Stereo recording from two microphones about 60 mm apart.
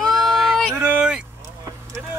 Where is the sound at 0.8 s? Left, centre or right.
Centre.